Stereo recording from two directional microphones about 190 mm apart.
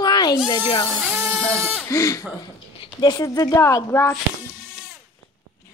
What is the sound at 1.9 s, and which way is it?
Speech, 15° left (ahead or behind).